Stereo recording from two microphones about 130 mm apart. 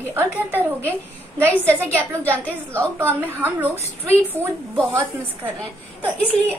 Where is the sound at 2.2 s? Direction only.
10° left (ahead or behind).